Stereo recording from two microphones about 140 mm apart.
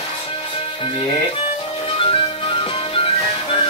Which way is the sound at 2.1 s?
40° left (ahead or behind).